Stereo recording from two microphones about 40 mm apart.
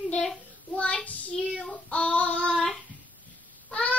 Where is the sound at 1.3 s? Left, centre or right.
Centre.